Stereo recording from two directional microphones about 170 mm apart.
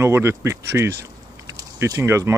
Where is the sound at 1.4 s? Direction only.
20° right (ahead or behind).